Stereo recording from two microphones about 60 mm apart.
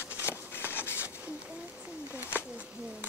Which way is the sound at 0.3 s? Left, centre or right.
Left.